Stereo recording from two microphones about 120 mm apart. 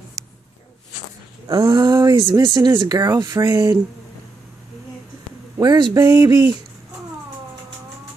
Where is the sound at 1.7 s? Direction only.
35° right (ahead or behind).